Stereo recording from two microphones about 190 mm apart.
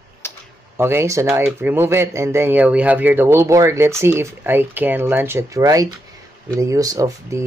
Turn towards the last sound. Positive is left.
turn(degrees=-15)  # may be behind; listen again after turning